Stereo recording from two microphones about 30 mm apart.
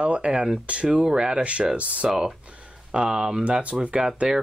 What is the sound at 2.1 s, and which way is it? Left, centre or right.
Speech, centre.